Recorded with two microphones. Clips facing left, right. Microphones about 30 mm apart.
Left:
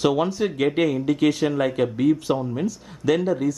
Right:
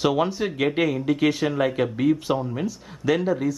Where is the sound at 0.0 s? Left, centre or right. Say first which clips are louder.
Left 1 dB; centre.